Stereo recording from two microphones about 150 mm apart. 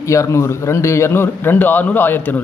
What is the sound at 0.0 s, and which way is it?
Speech, 20° left (ahead or behind).